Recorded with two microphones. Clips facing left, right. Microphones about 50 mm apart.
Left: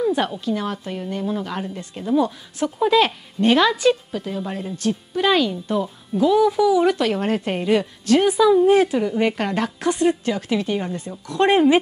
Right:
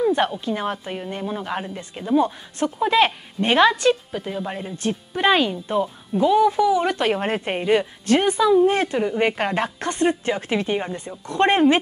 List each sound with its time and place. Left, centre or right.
0.0 s a sound: centre
0.5 s speech: right
7.0 s speech: right
8.3 s speech: centre
8.9 s speech: centre